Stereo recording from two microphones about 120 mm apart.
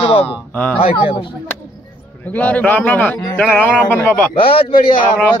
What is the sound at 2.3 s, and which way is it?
A man's voice, 10° left (ahead or behind).